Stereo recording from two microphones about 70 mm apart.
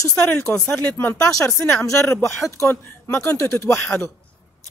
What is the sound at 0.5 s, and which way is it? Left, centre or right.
Speech, centre.